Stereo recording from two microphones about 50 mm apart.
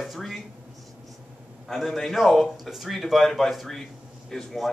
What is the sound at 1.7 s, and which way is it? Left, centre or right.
A man's voice, centre.